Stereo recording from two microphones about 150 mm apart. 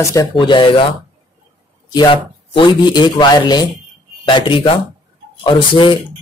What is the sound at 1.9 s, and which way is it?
Speech, 30° left (ahead or behind).